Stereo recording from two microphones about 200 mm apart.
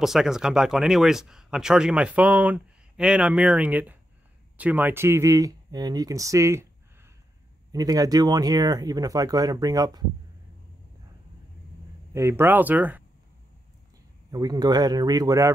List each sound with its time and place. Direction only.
0.0 s speech: centre (ahead or behind); by 10.0 s 20° right (ahead or behind)
12.1 s speech: 15° right (ahead or behind)
14.3 s speech: 20° right (ahead or behind)